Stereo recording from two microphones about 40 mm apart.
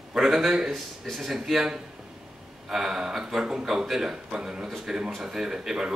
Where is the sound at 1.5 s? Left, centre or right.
Centre.